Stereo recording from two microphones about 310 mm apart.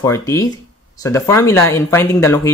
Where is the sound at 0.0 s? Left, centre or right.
Centre.